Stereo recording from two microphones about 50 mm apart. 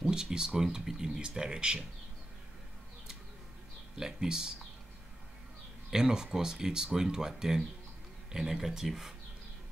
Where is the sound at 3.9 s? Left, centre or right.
Centre.